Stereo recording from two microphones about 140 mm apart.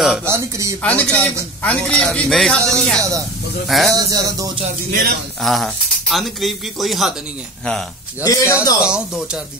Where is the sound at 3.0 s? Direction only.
25° right (ahead or behind).